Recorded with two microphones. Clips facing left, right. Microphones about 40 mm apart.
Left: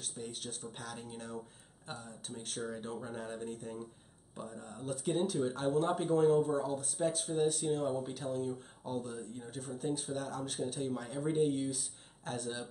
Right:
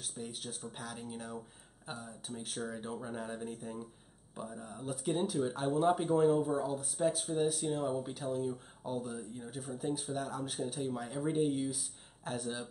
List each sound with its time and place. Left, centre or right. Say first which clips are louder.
0.0 s speech: even; centre